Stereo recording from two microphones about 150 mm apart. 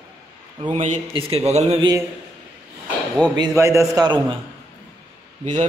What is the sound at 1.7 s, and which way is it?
Speech, 25° right (ahead or behind).